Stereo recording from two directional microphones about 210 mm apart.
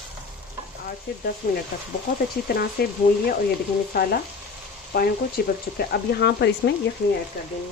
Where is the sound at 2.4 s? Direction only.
45° left (ahead or behind).